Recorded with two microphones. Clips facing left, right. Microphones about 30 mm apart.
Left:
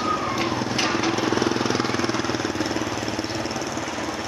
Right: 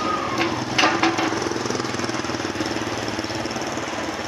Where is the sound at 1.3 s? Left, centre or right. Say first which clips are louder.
Left 2 dB; left; by 2.8 s centre.